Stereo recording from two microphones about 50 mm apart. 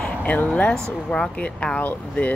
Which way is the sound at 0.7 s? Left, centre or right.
Centre.